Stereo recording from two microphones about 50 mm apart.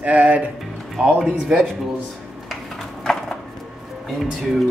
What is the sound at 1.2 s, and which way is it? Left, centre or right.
Speech, centre.